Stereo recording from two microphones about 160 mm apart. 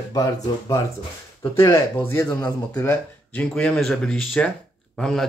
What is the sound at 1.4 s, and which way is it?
A man's voice, 20° left (ahead or behind).